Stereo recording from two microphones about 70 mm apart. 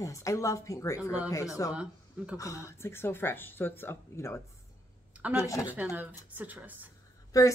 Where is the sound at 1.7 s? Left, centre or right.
Centre.